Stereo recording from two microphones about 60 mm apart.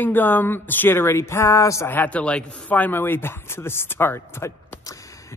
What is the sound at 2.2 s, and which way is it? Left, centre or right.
Speech, centre.